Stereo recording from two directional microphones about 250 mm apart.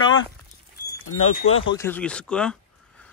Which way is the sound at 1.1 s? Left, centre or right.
Left.